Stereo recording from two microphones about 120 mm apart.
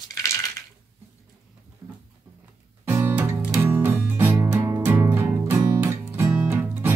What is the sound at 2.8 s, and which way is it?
Music, 20° right (ahead or behind).